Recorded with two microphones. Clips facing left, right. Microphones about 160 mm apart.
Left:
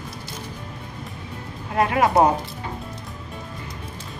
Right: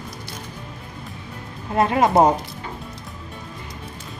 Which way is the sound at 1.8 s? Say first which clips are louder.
Right 2 dB; 20° right (ahead or behind).